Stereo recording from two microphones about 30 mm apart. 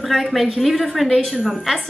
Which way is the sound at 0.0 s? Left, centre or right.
Centre.